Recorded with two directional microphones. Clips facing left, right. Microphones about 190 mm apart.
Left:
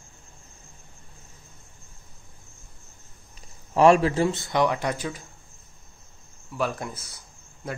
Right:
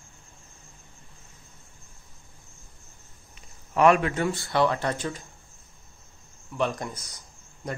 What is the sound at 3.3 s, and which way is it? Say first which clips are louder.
Speech: left 3 dB; 30° left (ahead or behind).